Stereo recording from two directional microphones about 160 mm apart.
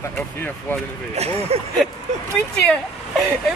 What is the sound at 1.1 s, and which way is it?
Speech, 40° right (ahead or behind).